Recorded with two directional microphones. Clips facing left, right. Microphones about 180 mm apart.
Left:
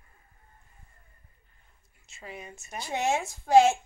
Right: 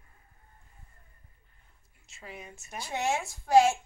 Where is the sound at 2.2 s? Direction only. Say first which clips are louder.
Left 2 dB; centre (ahead or behind).